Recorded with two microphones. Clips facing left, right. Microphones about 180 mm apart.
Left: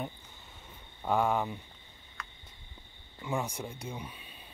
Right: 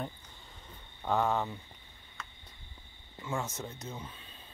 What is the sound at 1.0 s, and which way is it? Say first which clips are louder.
Speech: left 1 dB; 10° left (ahead or behind).